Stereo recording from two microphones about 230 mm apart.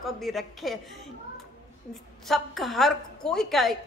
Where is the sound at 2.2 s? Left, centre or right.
Centre.